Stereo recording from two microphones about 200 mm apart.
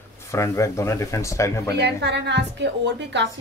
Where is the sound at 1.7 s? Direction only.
60° right (ahead or behind).